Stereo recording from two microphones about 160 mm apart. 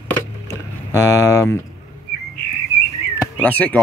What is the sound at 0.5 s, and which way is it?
Rowboat, 20° left (ahead or behind).